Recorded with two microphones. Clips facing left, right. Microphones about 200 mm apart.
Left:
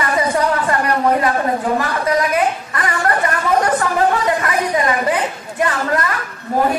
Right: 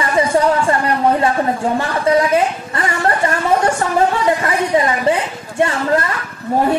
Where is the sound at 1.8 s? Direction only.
25° right (ahead or behind).